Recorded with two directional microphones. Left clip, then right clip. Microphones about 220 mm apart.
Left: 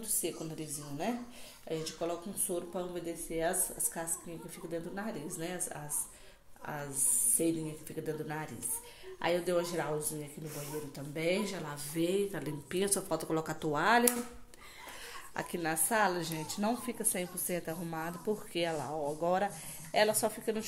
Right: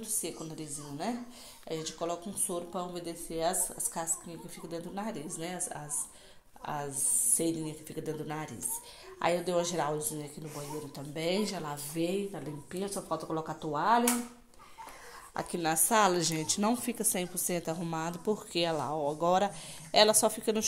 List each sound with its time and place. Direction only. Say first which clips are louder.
0.0 s a woman's voice: left 1 dB; 5° right (ahead or behind)
7.3 s speech: left 2 dB; 10° right (ahead or behind)
11.1 s speech: right 1 dB; 10° right (ahead or behind)
12.3 s a woman's voice: left 2 dB; 5° left (ahead or behind)
15.3 s speech: right 4 dB; 10° right (ahead or behind)